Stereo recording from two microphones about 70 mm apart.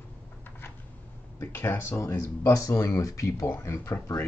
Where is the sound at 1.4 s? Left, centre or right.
Left.